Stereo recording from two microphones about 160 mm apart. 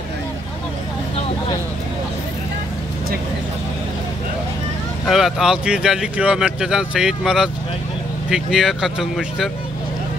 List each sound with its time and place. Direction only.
5.0 s speech: centre (ahead or behind)